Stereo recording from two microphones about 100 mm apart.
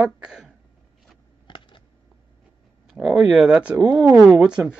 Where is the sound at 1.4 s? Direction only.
55° left (ahead or behind).